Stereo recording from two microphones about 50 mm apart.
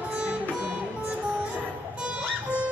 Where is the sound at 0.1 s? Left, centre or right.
Right.